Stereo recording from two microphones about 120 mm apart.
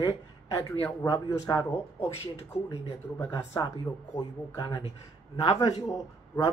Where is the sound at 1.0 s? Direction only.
30° left (ahead or behind).